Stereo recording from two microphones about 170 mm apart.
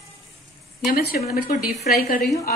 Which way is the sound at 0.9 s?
60° left (ahead or behind).